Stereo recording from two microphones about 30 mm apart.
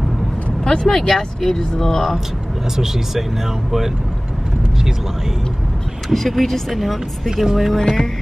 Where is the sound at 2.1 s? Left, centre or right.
Centre.